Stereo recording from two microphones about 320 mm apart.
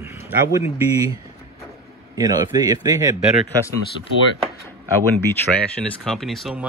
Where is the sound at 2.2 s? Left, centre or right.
Centre.